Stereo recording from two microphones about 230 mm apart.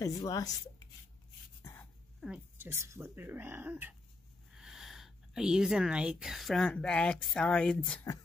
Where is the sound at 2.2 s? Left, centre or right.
Centre.